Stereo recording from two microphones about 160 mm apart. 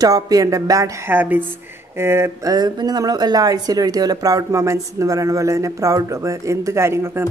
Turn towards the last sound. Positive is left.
turn(degrees=-15)  # may be behind; listen again after turning